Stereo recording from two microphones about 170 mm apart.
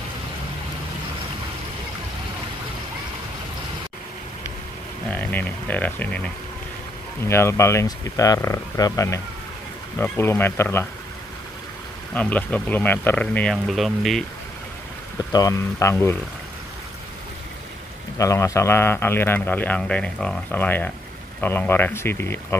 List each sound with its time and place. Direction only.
5.1 s a man's voice: 10° left (ahead or behind)
12.1 s a man's voice: 10° left (ahead or behind)
15.3 s a man's voice: 20° left (ahead or behind)
18.1 s a man's voice: 20° left (ahead or behind)